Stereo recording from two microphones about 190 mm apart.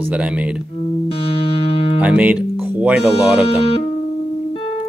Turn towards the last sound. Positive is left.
turn(degrees=30)  # may be behind; listen again after turning